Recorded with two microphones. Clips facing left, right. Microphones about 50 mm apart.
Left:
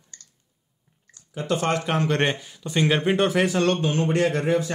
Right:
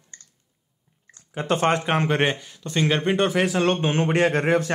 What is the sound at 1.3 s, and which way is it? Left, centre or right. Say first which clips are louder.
Speech: right 3 dB; right.